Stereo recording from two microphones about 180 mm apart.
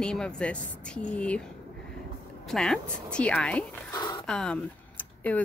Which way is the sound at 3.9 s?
25° left (ahead or behind).